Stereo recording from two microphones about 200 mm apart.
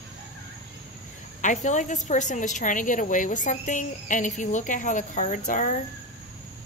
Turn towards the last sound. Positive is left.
turn(degrees=40)  # may be behind; listen again after turning